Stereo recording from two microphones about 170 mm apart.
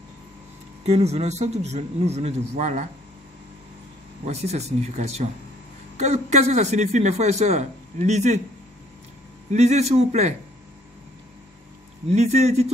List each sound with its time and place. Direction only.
0.8 s a man's voice: 40° right (ahead or behind)
4.3 s a man's voice: 40° right (ahead or behind)
9.5 s a man's voice: 40° right (ahead or behind)
12.1 s a man's voice: 40° right (ahead or behind)